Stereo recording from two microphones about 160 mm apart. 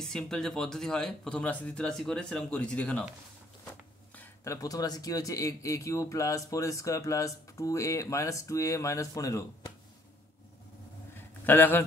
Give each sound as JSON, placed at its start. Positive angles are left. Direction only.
{"t": 0.0, "sound": "speech", "side_deg": 5}
{"t": 4.1, "sound": "a man's voice", "side_deg": 20}
{"t": 11.4, "sound": "a man's voice", "side_deg": 10}